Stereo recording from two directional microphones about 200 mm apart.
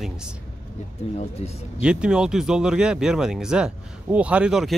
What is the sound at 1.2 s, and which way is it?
Speech, 30° left (ahead or behind).